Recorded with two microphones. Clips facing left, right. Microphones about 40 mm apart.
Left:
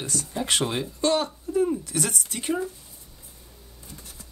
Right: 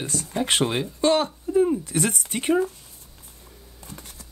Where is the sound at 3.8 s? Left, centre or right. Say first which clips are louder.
Right 4 dB; right.